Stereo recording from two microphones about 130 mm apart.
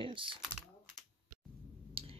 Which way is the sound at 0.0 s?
40° right (ahead or behind).